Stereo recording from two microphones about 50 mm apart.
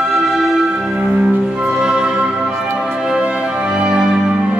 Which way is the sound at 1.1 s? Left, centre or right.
Centre.